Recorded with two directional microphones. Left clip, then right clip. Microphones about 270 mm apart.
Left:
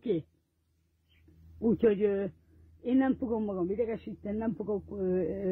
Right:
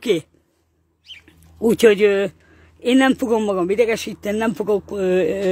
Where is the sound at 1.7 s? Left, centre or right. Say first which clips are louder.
Right 13 dB; centre.